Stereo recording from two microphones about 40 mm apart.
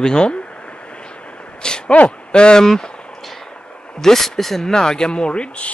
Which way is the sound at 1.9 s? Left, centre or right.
Left.